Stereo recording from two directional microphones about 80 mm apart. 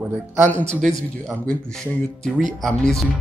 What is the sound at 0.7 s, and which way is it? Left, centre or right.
Speech, centre.